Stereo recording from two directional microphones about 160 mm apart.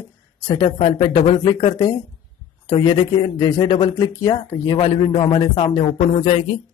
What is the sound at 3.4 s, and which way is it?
Speech, 25° left (ahead or behind).